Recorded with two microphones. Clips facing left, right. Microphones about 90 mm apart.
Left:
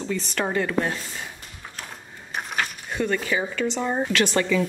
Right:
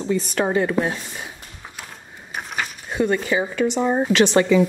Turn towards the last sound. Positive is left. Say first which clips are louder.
# right 6 dB
turn(degrees=-20)  # may be behind; listen again after turning